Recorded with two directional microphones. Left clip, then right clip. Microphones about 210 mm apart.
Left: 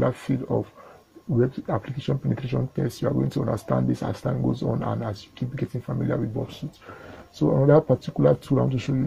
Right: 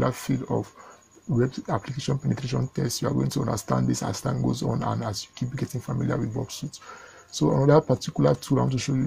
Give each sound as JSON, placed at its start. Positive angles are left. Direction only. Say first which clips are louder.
{"t": 0.0, "sound": "speech", "louder": "left 2 dB", "side_deg": -40}